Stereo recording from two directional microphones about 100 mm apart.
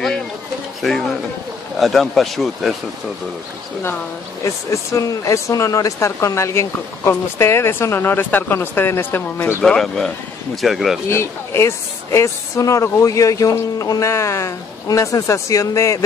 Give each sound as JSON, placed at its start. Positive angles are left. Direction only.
{"t": 0.8, "sound": "speech", "side_deg": 0}
{"t": 4.5, "sound": "speech", "side_deg": 35}
{"t": 9.6, "sound": "speech", "side_deg": 5}
{"t": 11.1, "sound": "speech", "side_deg": 25}